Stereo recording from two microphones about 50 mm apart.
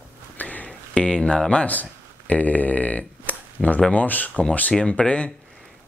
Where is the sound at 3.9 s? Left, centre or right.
Left.